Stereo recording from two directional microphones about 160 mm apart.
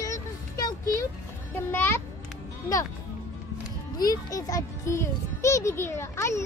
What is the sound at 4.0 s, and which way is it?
A child's voice, 20° left (ahead or behind).